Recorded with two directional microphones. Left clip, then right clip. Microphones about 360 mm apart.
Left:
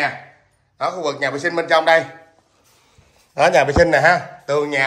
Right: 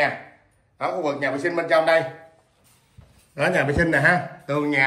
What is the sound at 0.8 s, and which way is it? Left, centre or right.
A man's voice, centre.